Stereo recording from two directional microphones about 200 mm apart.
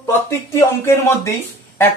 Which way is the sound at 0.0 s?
15° left (ahead or behind).